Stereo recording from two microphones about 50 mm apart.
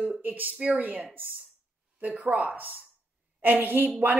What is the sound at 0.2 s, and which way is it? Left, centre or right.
A woman's voice, right.